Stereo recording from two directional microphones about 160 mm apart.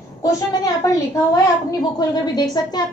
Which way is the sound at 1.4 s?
25° left (ahead or behind).